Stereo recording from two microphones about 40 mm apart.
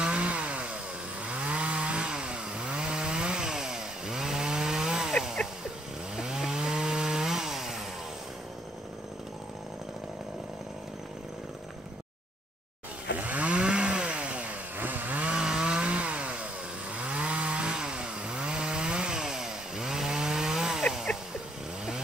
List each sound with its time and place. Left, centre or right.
0.0 s chainsaw: right
6.1 s chainsaw: centre
13.2 s chainsaw: right
14.8 s chainsaw: right
15.3 s chainsaw: centre